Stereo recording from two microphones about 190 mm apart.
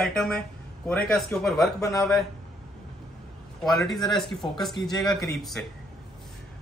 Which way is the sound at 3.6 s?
Centre (ahead or behind).